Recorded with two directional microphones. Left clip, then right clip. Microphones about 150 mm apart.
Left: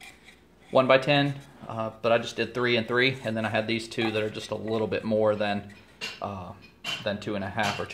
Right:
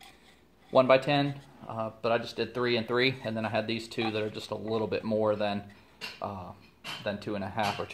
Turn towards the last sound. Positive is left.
turn(degrees=-35)  # may be behind; listen again after turning